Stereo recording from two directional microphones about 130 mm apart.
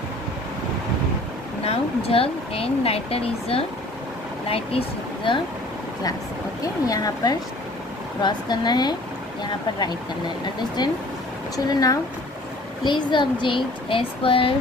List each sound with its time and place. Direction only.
1.6 s speech: 50° left (ahead or behind)
6.9 s speech: 30° left (ahead or behind)